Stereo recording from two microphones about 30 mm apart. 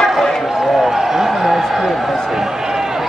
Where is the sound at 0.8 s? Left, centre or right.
Centre.